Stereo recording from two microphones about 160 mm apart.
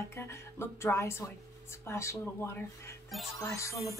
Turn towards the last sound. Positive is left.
turn(degrees=20)  # may be behind; listen again after turning